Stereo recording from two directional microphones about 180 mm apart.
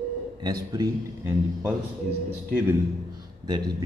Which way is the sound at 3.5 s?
25° right (ahead or behind).